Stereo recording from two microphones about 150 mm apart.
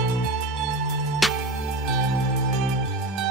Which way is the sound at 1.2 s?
Centre (ahead or behind).